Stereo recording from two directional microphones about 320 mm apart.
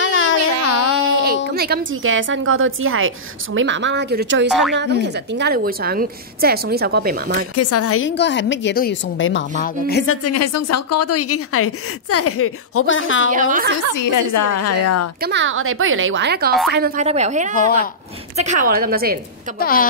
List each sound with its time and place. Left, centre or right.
0.0 s a sound: left
1.1 s speech: right
4.5 s speech: centre
4.7 s a woman's voice: right
7.5 s a woman's voice: left
10.2 s a woman's voice: left
13.3 s a woman's voice: right
13.9 s a woman's voice: left
15.2 s a woman's voice: right
19.6 s a woman's voice: left